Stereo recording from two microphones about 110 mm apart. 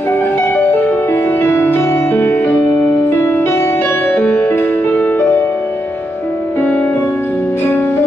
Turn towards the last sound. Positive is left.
turn(degrees=20)  # may be behind; listen again after turning